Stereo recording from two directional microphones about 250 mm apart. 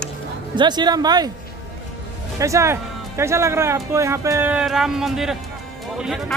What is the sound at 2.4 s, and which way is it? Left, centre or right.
Speech, centre.